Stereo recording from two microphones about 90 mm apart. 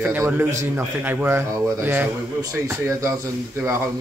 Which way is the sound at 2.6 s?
35° right (ahead or behind).